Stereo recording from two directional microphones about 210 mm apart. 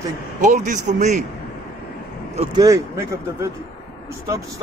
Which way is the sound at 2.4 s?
20° right (ahead or behind).